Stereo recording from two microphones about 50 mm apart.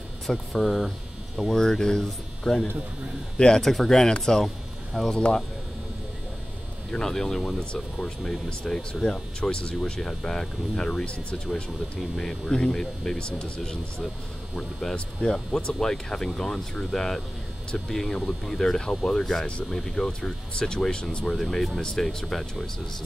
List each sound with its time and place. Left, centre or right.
0.3 s speech: centre
6.9 s speech: centre
19.4 s speech: centre
21.4 s speech: centre